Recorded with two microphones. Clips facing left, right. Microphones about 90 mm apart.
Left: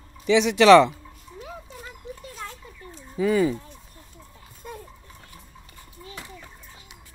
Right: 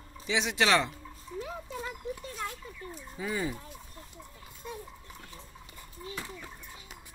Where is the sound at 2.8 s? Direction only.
35° right (ahead or behind).